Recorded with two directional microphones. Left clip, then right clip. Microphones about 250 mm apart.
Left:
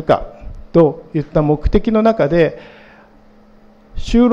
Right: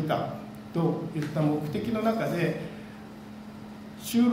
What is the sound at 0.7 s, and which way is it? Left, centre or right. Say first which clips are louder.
A man's voice: left 17 dB; left.